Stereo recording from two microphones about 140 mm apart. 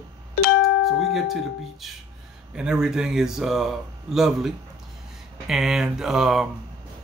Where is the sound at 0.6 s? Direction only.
Centre (ahead or behind).